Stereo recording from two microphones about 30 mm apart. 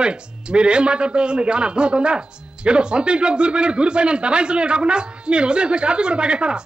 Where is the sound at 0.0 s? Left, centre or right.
Right.